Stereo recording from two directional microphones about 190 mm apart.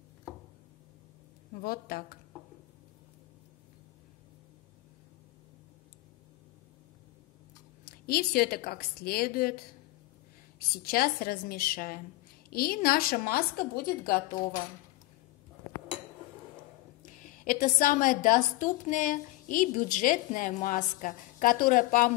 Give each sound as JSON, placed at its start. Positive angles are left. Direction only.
{"t": 1.6, "sound": "a woman's voice", "side_deg": 50}
{"t": 8.1, "sound": "a woman's voice", "side_deg": 55}
{"t": 10.8, "sound": "a woman's voice", "side_deg": 50}
{"t": 17.0, "sound": "a woman's voice", "side_deg": 45}